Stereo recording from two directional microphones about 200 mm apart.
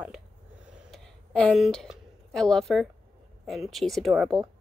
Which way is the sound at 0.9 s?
5° left (ahead or behind).